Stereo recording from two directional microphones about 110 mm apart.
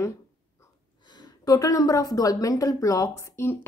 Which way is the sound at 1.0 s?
40° left (ahead or behind).